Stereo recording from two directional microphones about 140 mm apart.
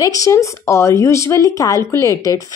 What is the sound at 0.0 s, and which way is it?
Speech, 25° left (ahead or behind).